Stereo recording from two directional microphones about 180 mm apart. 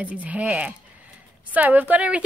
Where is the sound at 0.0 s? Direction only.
10° right (ahead or behind).